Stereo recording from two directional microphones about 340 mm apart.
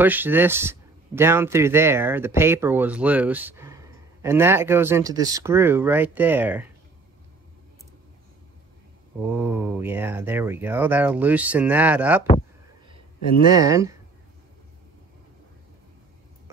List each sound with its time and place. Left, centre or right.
0.0 s a man's voice: centre
9.2 s speech: centre
13.5 s a man's voice: centre